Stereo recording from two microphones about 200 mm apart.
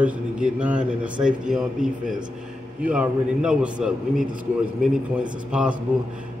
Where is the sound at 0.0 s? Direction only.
5° right (ahead or behind).